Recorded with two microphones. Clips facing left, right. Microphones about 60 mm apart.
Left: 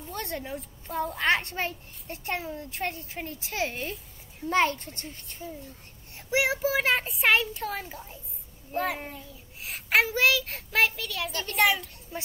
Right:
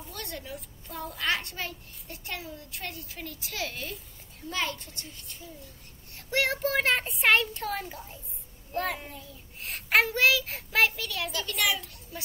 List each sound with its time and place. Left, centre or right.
0.1 s a child's voice: left
6.3 s a child's voice: centre
11.3 s a child's voice: left